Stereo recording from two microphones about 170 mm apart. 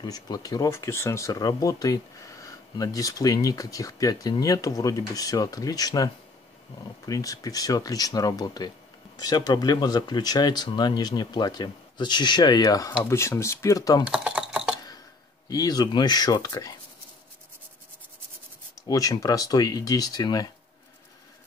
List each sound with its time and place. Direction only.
0.0 s speech: 25° left (ahead or behind)
7.1 s speech: 20° left (ahead or behind)
14.0 s typing: 5° right (ahead or behind)
15.4 s speech: 20° left (ahead or behind)
18.9 s speech: 20° left (ahead or behind)